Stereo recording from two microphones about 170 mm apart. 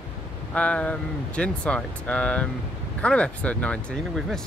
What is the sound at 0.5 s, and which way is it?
Speech, 5° left (ahead or behind).